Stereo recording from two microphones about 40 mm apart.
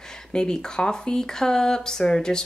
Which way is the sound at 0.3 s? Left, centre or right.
Centre.